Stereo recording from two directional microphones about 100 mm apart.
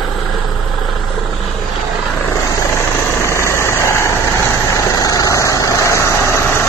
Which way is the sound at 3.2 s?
30° left (ahead or behind).